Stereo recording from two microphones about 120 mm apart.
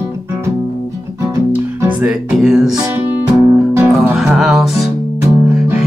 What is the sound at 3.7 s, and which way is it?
Music, 15° right (ahead or behind).